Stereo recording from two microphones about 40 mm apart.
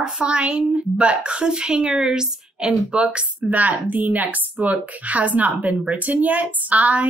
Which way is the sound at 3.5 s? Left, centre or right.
Right.